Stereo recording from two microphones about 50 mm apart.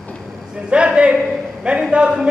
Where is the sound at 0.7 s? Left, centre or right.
Centre.